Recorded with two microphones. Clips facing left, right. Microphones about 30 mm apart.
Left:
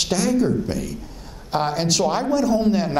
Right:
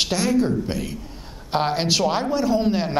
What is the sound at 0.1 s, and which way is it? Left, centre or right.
Speech, right.